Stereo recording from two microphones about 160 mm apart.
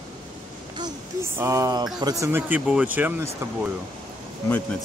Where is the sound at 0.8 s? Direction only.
20° right (ahead or behind).